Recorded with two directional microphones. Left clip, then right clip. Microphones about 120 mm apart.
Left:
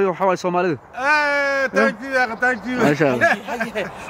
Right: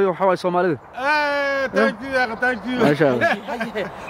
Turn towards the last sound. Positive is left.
turn(degrees=5)  # may be behind; listen again after turning